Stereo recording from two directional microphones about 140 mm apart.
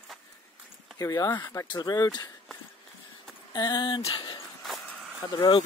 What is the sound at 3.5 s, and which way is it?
Speech, 30° left (ahead or behind).